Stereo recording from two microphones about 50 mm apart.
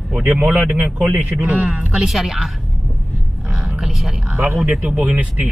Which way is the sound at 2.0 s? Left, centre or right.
Centre.